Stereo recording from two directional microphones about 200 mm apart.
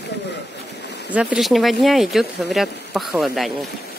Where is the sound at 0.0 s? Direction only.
60° left (ahead or behind).